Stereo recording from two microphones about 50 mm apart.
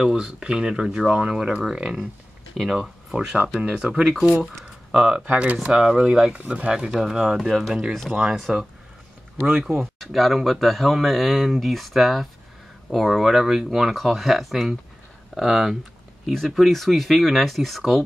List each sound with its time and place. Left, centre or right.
0.0 s speech: centre
4.2 s speech: centre
4.9 s speech: centre
6.7 s speech: centre
9.9 s speech: centre
16.3 s speech: centre